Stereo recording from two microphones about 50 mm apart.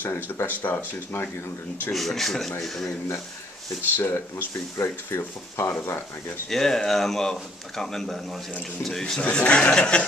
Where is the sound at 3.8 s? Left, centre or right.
Left.